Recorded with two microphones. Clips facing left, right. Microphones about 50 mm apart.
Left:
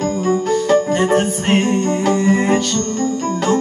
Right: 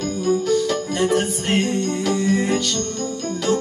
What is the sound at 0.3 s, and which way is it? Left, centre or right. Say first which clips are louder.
Music: left 4 dB; left.